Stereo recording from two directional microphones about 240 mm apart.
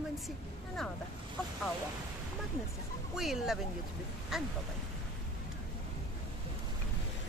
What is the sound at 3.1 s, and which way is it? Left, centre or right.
Speech, centre.